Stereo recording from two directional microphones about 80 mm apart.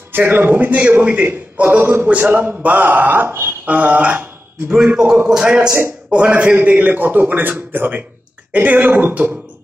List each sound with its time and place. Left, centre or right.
0.1 s a man's voice: right; by 5.7 s centre
5.7 s a man's voice: right
6.2 s a man's voice: centre